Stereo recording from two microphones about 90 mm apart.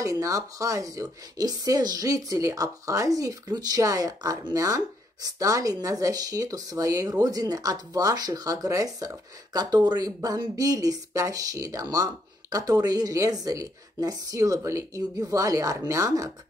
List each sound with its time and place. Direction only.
0.0 s a woman's voice: 35° right (ahead or behind)